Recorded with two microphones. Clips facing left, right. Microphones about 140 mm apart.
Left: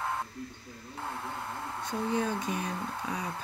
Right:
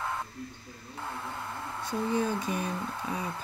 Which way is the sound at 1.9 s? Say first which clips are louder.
Right 2 dB; 5° right (ahead or behind).